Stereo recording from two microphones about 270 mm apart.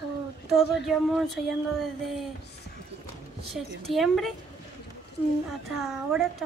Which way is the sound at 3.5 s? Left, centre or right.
Centre.